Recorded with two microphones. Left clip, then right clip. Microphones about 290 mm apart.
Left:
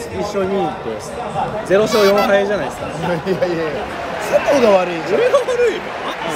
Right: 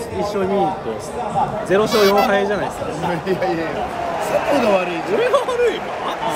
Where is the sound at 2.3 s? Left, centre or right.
Centre.